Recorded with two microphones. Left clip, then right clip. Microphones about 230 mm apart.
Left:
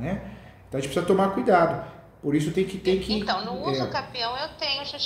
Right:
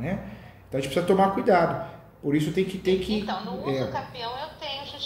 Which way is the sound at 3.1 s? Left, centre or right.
Left.